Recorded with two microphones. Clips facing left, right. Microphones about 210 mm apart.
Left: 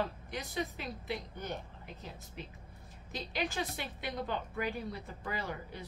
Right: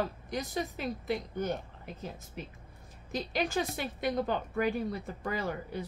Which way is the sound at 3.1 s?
45° right (ahead or behind).